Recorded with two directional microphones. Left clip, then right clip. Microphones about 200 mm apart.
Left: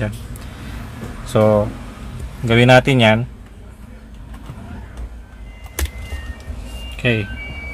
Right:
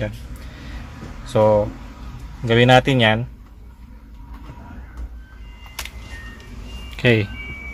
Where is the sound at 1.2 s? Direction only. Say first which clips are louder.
Left 1 dB; 10° left (ahead or behind).